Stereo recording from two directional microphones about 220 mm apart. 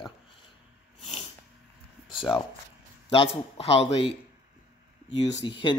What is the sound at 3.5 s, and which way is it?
Speech, 25° left (ahead or behind).